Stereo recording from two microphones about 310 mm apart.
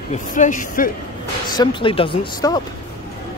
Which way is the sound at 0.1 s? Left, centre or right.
Left.